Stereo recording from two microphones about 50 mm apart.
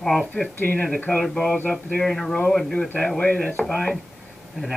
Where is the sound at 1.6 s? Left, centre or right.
Left.